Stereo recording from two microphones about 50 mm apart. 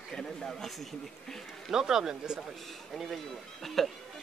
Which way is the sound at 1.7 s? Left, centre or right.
Centre.